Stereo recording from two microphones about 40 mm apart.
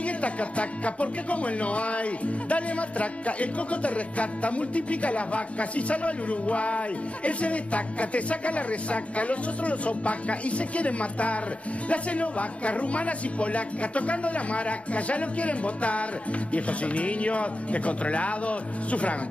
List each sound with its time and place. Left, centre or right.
0.0 s music: left